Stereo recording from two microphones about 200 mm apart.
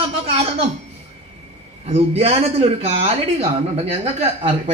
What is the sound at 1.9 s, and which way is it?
A woman's voice, 30° right (ahead or behind).